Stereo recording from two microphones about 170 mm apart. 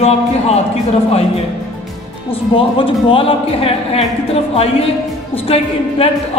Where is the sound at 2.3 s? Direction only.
30° left (ahead or behind).